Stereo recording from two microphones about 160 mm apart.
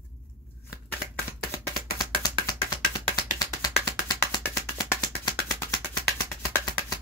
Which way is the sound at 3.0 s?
25° left (ahead or behind).